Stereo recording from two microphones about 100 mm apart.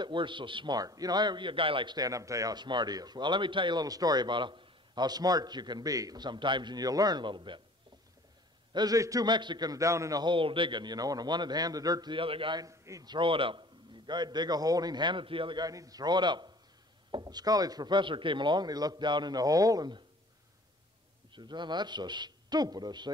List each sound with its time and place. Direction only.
0.0 s speech: 55° right (ahead or behind)
0.7 s speech: 40° right (ahead or behind); by 2.0 s 60° right (ahead or behind)
2.0 s speech: 35° right (ahead or behind); by 7.6 s 55° right (ahead or behind)
8.7 s a man's voice: 35° right (ahead or behind)
10.2 s speech: 55° right (ahead or behind); by 12.2 s 40° right (ahead or behind)
12.2 s a man's voice: 60° right (ahead or behind)
12.5 s a man's voice: 35° right (ahead or behind)
13.1 s speech: 60° right (ahead or behind); by 20.0 s 40° right (ahead or behind)
21.3 s speech: 50° right (ahead or behind)